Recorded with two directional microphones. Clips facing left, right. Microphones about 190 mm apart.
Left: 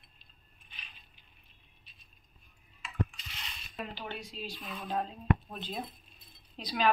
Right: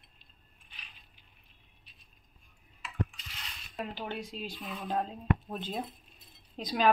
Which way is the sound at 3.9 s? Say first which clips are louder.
Right 4 dB; 50° right (ahead or behind).